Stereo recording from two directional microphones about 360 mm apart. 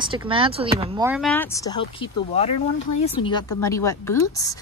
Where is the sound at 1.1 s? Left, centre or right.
Centre.